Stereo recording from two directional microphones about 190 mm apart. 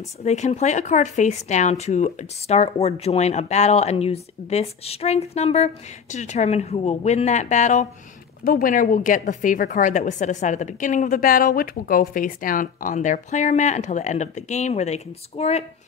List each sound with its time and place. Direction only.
0.2 s a woman's voice: 35° left (ahead or behind)